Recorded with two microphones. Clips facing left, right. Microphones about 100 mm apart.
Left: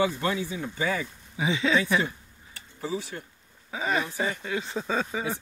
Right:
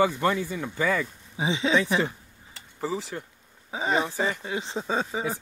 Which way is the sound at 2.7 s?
80° right.